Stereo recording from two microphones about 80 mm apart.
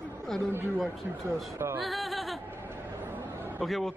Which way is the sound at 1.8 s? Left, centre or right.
Centre.